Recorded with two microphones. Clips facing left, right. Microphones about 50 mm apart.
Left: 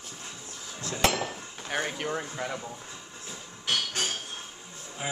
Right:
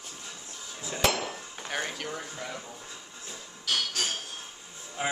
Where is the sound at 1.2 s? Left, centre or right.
Centre.